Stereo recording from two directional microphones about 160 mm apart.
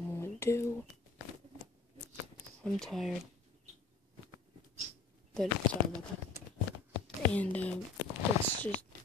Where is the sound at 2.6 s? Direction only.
5° left (ahead or behind).